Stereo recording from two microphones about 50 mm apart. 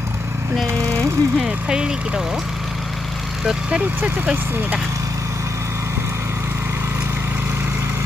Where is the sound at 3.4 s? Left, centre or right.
Centre.